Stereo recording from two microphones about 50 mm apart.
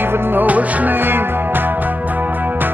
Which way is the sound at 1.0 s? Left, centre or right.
Right.